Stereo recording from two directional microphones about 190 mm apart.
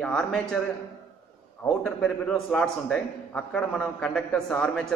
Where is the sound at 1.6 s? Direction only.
5° left (ahead or behind).